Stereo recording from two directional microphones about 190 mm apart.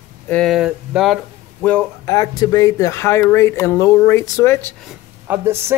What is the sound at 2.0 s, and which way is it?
Speech, 20° left (ahead or behind).